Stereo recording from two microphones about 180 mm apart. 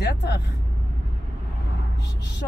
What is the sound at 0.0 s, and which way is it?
Vehicle, 70° left (ahead or behind).